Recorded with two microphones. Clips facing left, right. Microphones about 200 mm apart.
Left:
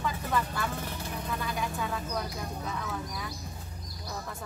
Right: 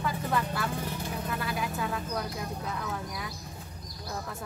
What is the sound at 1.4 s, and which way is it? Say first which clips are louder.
Speech: right 1 dB; 5° right (ahead or behind).